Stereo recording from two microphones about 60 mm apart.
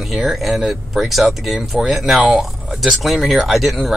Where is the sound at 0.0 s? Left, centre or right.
Centre.